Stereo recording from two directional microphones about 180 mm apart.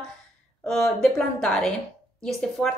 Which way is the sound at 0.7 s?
Centre (ahead or behind).